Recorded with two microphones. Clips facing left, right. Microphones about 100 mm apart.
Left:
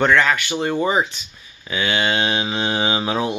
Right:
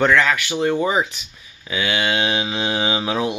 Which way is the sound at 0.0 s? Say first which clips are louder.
Even; centre (ahead or behind).